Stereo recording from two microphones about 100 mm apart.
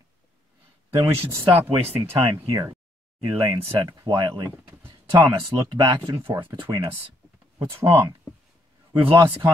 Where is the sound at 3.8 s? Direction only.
40° right (ahead or behind).